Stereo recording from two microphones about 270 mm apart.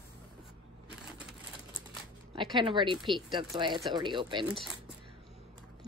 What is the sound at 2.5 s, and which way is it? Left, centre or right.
A woman's voice, centre.